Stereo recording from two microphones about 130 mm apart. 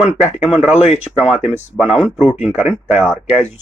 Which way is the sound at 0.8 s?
60° left (ahead or behind).